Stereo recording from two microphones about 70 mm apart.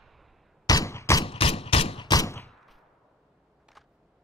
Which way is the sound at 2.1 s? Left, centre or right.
Left.